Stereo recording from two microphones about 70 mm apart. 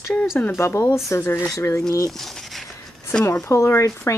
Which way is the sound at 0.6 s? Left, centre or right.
Left.